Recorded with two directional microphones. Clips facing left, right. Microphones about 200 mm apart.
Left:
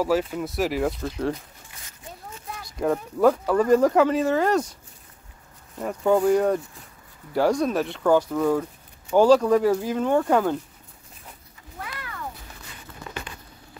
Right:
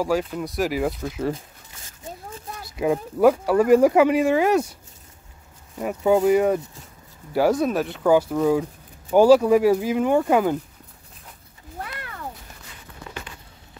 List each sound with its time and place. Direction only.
0.0 s speech: centre (ahead or behind)
2.0 s a sound: 30° right (ahead or behind)
2.7 s speech: 10° right (ahead or behind)
5.8 s speech: 10° right (ahead or behind)